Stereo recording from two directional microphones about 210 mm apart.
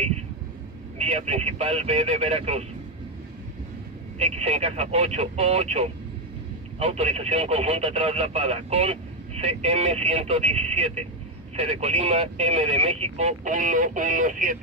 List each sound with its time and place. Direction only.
0.9 s speech: 30° right (ahead or behind)
4.2 s speech: 30° right (ahead or behind)